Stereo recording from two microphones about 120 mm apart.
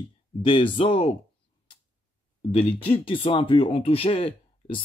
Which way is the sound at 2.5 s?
50° left (ahead or behind).